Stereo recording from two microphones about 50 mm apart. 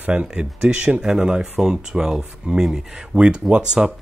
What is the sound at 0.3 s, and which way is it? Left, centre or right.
Speech, centre.